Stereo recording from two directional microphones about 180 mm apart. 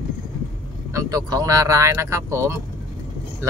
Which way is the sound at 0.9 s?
20° right (ahead or behind).